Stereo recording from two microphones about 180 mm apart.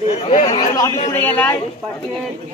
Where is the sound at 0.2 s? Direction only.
40° left (ahead or behind).